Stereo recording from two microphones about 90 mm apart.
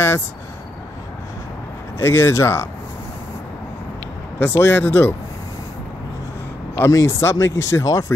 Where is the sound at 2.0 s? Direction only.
30° left (ahead or behind).